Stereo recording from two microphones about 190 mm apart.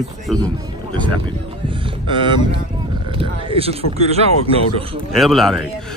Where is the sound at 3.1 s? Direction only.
30° right (ahead or behind).